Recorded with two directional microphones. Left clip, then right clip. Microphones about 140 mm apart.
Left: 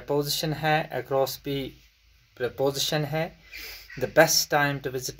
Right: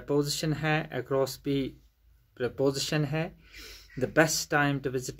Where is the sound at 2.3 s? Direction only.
55° right (ahead or behind).